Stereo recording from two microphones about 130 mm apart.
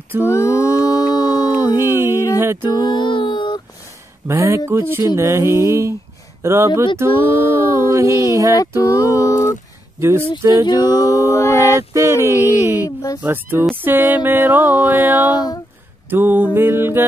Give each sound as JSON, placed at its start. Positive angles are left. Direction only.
{"t": 0.2, "sound": "mantra", "side_deg": 20}
{"t": 1.6, "sound": "a sound", "side_deg": -15}
{"t": 2.3, "sound": "music", "side_deg": -20}
{"t": 2.7, "sound": "a sound", "side_deg": 35}
{"t": 4.3, "sound": "speech", "side_deg": -20}
{"t": 7.2, "sound": "a sound", "side_deg": 45}
{"t": 7.7, "sound": "speech", "side_deg": -20}
{"t": 8.5, "sound": "a sound", "side_deg": 25}
{"t": 9.9, "sound": "speech", "side_deg": -20}
{"t": 11.0, "sound": "mantra", "side_deg": 25}
{"t": 11.9, "sound": "speech", "side_deg": -20}
{"t": 12.6, "sound": "music", "side_deg": -15}
{"t": 15.3, "sound": "speech", "side_deg": 30}
{"t": 16.1, "sound": "music", "side_deg": -15}